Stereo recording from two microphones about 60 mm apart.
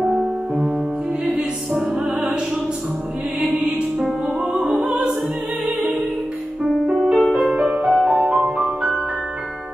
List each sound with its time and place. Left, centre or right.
0.1 s music: centre
4.7 s opera: centre
6.9 s music: centre
7.5 s music: right
7.8 s music: centre